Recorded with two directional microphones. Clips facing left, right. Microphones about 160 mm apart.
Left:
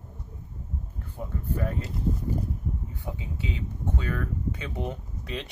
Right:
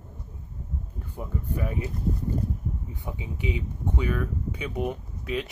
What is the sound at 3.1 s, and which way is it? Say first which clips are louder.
Speech: right 6 dB; 15° right (ahead or behind).